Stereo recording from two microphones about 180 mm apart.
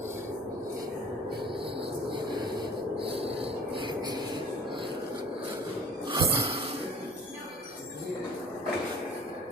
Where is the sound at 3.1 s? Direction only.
30° right (ahead or behind).